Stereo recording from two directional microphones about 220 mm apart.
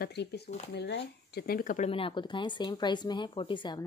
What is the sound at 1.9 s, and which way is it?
Speech, 25° left (ahead or behind).